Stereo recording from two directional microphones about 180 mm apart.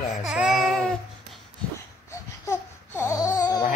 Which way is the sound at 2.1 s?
15° left (ahead or behind).